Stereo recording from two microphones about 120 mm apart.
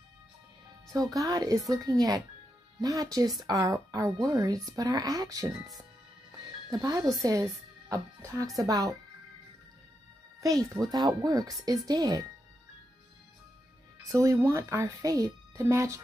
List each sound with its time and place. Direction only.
0.9 s speech: 30° right (ahead or behind)
6.7 s speech: 30° right (ahead or behind)
10.4 s speech: 30° right (ahead or behind)
14.0 s speech: 25° right (ahead or behind)